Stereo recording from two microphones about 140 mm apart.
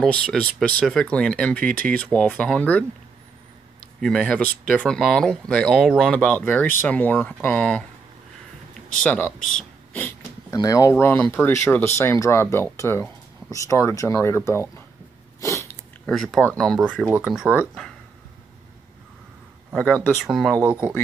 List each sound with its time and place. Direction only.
0.0 s speech: 5° left (ahead or behind)
4.0 s speech: 5° left (ahead or behind)
9.0 s speech: 5° left (ahead or behind)
10.5 s speech: 25° left (ahead or behind)
16.1 s speech: 5° left (ahead or behind)
17.0 s speech: 10° right (ahead or behind)
19.7 s speech: 5° left (ahead or behind)